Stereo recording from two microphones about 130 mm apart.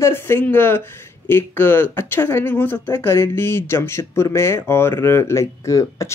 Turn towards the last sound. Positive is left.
turn(degrees=25)  # may be behind; listen again after turning